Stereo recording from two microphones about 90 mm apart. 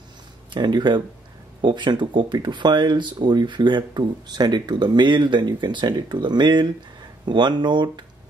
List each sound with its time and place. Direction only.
0.5 s speech: 55° right (ahead or behind)